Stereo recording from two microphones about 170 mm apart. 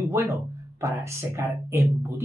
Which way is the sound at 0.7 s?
15° right (ahead or behind).